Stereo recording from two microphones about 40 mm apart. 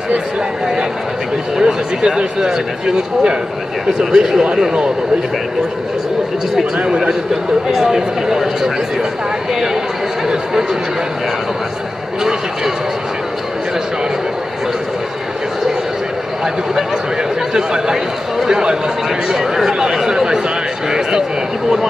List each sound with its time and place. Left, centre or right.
1.6 s speech: centre
4.0 s speech: centre
6.8 s speech: centre
10.2 s speech: centre
12.2 s speech: centre
18.4 s speech: centre